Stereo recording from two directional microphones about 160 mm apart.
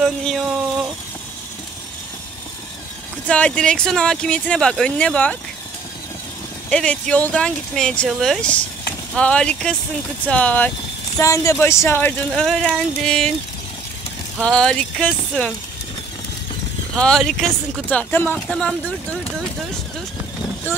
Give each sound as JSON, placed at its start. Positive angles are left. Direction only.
{"t": 0.0, "sound": "a sound", "side_deg": 0}
{"t": 3.3, "sound": "speech", "side_deg": 5}
{"t": 6.7, "sound": "speech", "side_deg": 5}
{"t": 12.4, "sound": "speech", "side_deg": 5}
{"t": 14.4, "sound": "speech", "side_deg": 5}
{"t": 16.9, "sound": "speech", "side_deg": 5}